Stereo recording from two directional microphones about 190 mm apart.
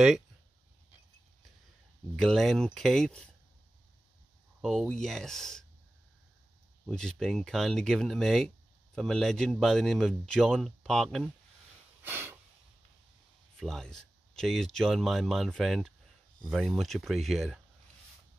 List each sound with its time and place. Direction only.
2.1 s a man's voice: centre (ahead or behind)
4.6 s a man's voice: centre (ahead or behind)
6.9 s a man's voice: 5° left (ahead or behind)
12.0 s a sound: 10° right (ahead or behind)
13.6 s a man's voice: centre (ahead or behind)